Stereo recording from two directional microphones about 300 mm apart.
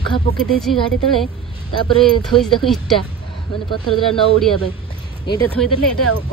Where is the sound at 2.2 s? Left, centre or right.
Centre.